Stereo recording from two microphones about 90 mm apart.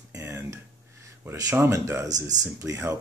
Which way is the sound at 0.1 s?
30° right (ahead or behind).